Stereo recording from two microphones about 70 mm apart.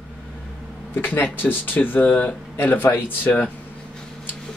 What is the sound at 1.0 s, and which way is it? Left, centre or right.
Speech, left.